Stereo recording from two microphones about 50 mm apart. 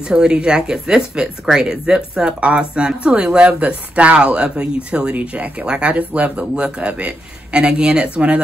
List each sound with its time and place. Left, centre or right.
0.1 s speech: centre
5.1 s speech: right